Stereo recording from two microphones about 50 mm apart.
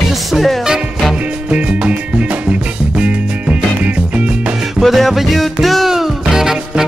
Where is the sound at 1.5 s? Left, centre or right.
Right.